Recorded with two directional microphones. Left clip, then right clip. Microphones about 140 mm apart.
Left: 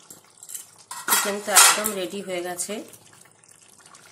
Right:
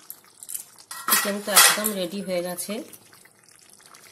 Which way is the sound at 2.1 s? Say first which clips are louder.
Right 2 dB; 60° right (ahead or behind).